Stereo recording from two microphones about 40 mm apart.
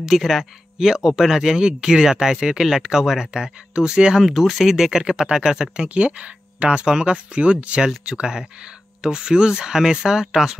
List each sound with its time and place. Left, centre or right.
0.0 s speech: centre
3.7 s speech: right
4.2 s speech: centre
5.9 s speech: right; by 10.6 s centre